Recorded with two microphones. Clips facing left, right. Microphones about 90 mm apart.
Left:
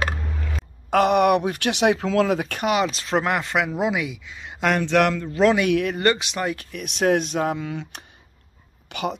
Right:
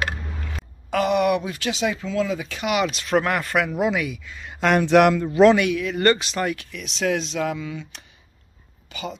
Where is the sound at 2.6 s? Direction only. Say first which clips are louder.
Even; 35° left (ahead or behind); by 4.6 s 15° left (ahead or behind).